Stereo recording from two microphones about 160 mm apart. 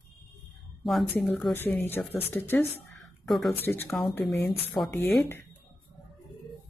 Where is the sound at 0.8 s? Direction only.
Centre (ahead or behind).